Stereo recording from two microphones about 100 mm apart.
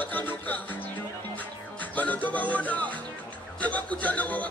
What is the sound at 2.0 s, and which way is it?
Music, 15° left (ahead or behind).